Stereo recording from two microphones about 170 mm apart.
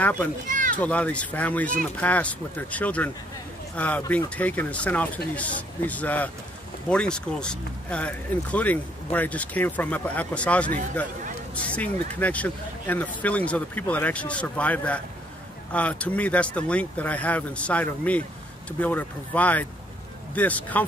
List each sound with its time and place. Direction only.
0.5 s children playing: 50° right (ahead or behind)
0.7 s speech: 10° left (ahead or behind)